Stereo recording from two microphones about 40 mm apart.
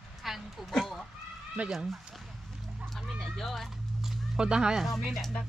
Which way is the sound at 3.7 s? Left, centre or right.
Centre.